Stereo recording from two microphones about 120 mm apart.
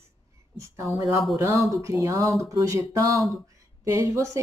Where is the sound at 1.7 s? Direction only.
25° right (ahead or behind).